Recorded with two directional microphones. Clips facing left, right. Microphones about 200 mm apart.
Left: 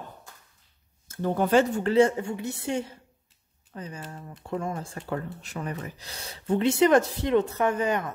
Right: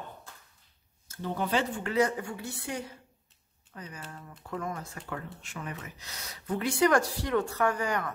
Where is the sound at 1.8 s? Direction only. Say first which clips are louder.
Left 7 dB; 30° left (ahead or behind).